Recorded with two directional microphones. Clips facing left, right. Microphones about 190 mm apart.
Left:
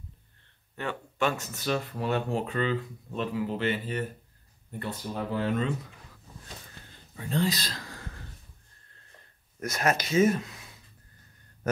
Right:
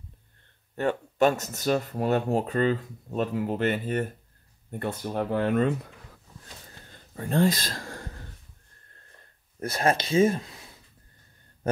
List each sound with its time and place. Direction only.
0.7 s speech: 40° right (ahead or behind)
7.2 s speech: 50° right (ahead or behind)
9.6 s speech: 30° right (ahead or behind)